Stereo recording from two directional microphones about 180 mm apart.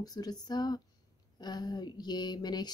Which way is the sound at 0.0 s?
20° left (ahead or behind).